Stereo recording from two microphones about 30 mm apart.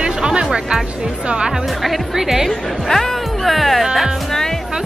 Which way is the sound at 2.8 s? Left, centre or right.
Centre.